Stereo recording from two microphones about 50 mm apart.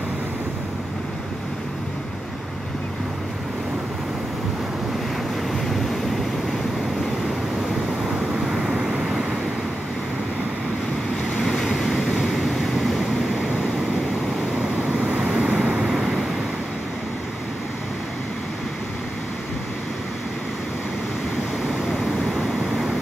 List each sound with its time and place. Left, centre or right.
5.5 s vehicle: centre
8.1 s vehicle: centre
11.2 s vehicle: centre
14.6 s vehicle: centre
15.1 s waves: centre
15.8 s waves: centre
21.6 s vehicle: centre